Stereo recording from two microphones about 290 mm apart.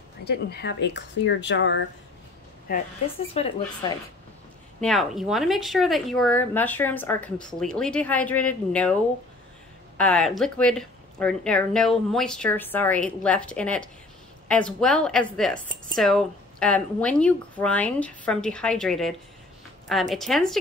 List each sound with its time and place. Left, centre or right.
0.2 s a woman's voice: left
3.3 s speech: centre
4.7 s speech: centre
9.9 s speech: centre